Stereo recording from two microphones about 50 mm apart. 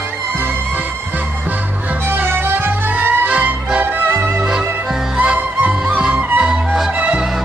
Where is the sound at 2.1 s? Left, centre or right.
Right.